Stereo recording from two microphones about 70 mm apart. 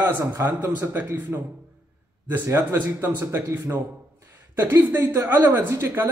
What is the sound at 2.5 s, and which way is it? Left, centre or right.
Speech, right.